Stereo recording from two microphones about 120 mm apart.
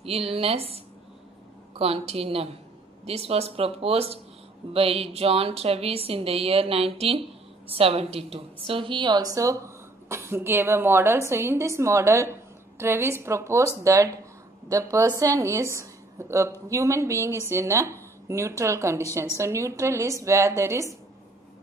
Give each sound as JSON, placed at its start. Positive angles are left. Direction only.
{"t": 0.0, "sound": "a woman's voice", "side_deg": -55}
{"t": 1.8, "sound": "a woman's voice", "side_deg": -55}